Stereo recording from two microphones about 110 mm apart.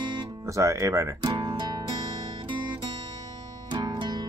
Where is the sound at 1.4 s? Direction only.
40° right (ahead or behind).